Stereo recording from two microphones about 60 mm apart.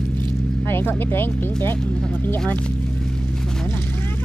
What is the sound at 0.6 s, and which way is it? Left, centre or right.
Speech, left.